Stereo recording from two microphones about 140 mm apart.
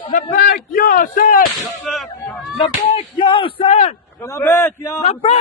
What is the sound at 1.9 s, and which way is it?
Speech, 5° left (ahead or behind).